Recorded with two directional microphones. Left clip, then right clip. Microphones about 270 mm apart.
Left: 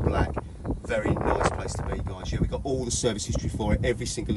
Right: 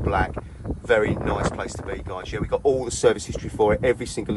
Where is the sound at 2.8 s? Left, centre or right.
Left.